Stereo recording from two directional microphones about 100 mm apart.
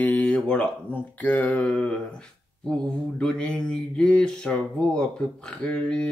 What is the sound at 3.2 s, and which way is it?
Speech, 10° left (ahead or behind).